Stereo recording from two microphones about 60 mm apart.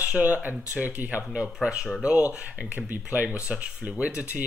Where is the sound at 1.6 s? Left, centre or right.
Centre.